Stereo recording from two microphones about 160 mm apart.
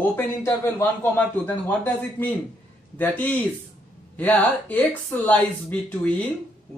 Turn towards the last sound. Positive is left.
turn(degrees=10)  # may be behind; listen again after turning